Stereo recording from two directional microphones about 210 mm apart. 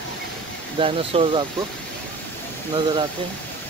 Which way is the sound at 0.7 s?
25° right (ahead or behind).